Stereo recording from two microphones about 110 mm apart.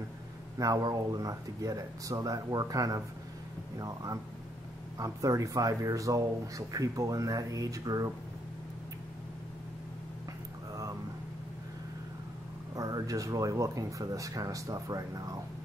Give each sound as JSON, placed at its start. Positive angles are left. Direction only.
{"t": 0.6, "sound": "speech", "side_deg": -30}
{"t": 10.7, "sound": "a sound", "side_deg": -30}
{"t": 12.7, "sound": "speech", "side_deg": -35}